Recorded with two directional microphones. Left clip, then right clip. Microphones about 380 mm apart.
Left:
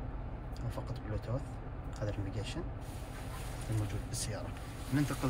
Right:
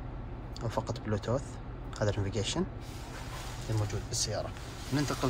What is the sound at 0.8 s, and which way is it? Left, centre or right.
Speech, centre.